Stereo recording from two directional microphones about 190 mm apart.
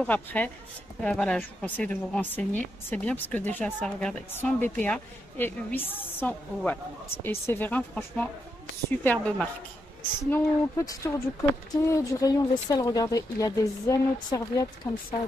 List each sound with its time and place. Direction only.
0.0 s a woman's voice: 10° left (ahead or behind)